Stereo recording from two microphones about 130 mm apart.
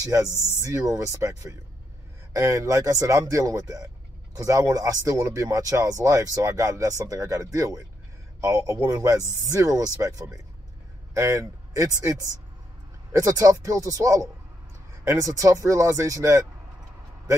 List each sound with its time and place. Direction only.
0.6 s a man's voice: 25° right (ahead or behind)
13.1 s speech: 25° right (ahead or behind)